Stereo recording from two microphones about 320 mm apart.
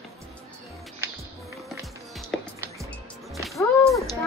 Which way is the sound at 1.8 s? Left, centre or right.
Centre.